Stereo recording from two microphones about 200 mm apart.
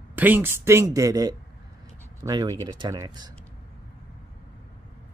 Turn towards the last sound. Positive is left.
turn(degrees=-20)  # may be behind; listen again after turning